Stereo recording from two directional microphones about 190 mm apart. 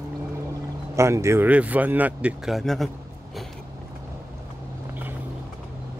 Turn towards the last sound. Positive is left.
turn(degrees=-10)  # may be behind; listen again after turning